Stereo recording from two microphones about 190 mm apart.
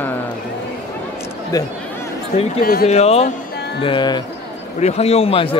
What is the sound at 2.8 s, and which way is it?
Speech, 35° left (ahead or behind).